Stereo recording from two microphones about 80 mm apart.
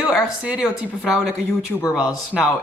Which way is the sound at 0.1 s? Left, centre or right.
Centre.